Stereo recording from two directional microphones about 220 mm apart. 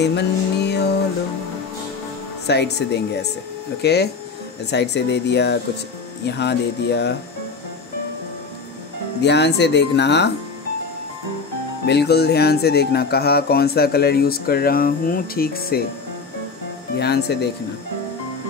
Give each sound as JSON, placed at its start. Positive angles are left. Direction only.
{"t": 0.0, "sound": "music", "side_deg": 50}
{"t": 2.4, "sound": "speech", "side_deg": 50}
{"t": 9.2, "sound": "speech", "side_deg": 50}
{"t": 11.8, "sound": "speech", "side_deg": 50}
{"t": 17.0, "sound": "speech", "side_deg": 50}